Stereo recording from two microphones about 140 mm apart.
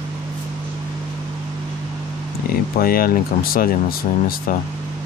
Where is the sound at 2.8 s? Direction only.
90° left.